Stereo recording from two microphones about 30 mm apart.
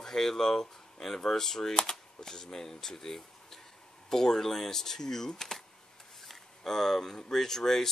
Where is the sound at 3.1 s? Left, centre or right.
Centre.